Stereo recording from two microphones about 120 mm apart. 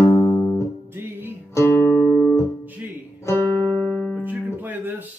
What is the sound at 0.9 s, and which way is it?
Music, 15° right (ahead or behind).